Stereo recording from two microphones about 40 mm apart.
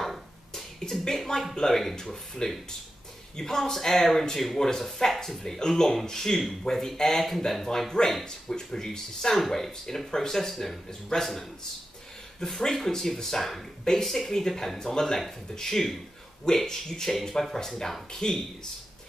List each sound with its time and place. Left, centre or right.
0.0 s a sound: centre
1.0 s speech: centre
10.5 s speech: centre
10.9 s a man's voice: centre
12.4 s speech: centre